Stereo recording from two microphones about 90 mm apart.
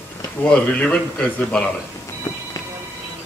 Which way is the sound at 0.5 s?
15° left (ahead or behind).